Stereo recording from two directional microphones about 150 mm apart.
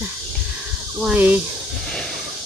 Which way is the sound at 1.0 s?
10° right (ahead or behind).